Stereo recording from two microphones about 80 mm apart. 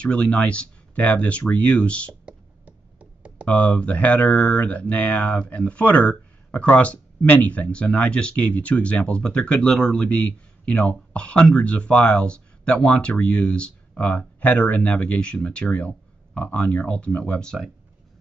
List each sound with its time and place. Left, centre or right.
0.0 s speech: centre
2.2 s a sound: centre
3.4 s speech: centre